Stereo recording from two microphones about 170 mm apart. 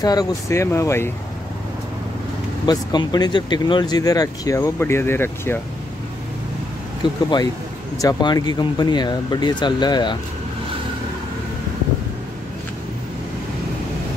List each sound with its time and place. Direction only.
0.0 s speech: 20° left (ahead or behind)
2.6 s speech: 25° left (ahead or behind)
7.0 s speech: 25° left (ahead or behind)